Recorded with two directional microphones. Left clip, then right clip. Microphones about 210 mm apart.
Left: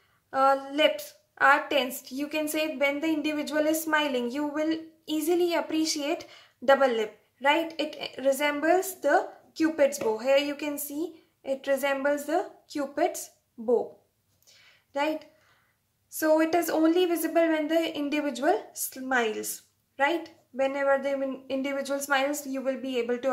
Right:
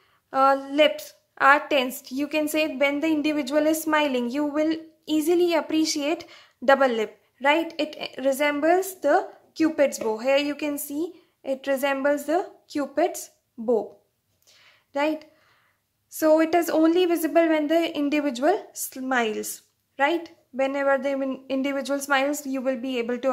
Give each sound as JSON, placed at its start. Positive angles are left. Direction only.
{"t": 0.3, "sound": "a woman's voice", "side_deg": -40}
{"t": 14.5, "sound": "a sound", "side_deg": -40}
{"t": 16.1, "sound": "a woman's voice", "side_deg": -40}